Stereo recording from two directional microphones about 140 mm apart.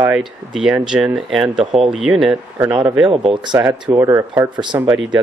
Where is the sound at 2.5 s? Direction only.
20° right (ahead or behind).